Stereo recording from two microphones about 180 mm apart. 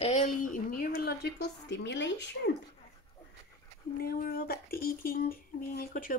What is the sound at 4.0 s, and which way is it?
Speech, 55° left (ahead or behind).